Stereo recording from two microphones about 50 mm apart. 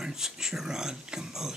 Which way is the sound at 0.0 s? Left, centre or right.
Centre.